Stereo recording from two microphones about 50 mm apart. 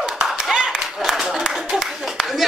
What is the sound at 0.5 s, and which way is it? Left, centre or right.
Applause, centre.